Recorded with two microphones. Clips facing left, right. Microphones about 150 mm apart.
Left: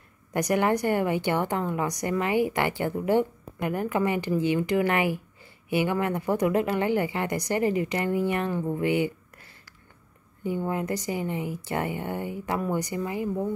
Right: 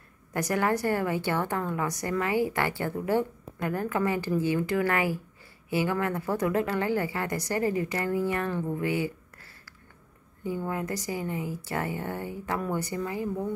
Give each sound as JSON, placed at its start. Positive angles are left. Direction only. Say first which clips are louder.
{"t": 0.3, "sound": "a woman's voice", "louder": "left 3 dB", "side_deg": 20}